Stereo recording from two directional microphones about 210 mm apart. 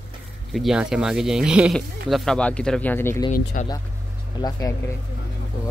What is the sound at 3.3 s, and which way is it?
Speech, 40° left (ahead or behind).